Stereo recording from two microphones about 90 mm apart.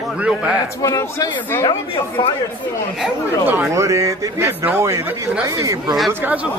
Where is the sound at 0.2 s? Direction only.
15° right (ahead or behind).